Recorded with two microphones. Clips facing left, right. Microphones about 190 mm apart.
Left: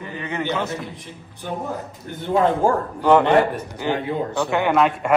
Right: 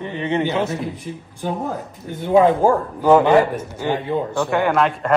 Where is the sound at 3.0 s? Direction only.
5° right (ahead or behind).